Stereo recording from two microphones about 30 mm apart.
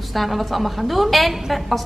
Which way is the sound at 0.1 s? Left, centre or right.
Centre.